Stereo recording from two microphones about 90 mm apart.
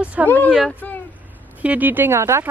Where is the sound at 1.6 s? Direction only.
20° right (ahead or behind).